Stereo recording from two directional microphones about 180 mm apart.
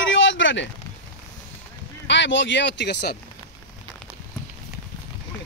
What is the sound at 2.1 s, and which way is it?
Speech, 85° left.